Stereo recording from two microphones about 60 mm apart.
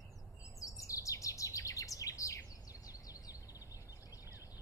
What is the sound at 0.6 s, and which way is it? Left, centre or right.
Chirp, left.